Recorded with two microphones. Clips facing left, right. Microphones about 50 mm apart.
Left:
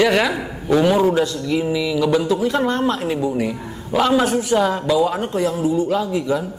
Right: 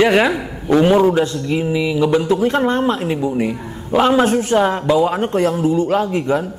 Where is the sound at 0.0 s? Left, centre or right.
Right.